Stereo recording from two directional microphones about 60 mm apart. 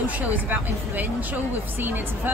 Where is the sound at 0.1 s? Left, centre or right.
Right.